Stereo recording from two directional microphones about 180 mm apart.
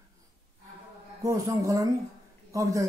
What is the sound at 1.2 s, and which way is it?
Speech, 20° right (ahead or behind).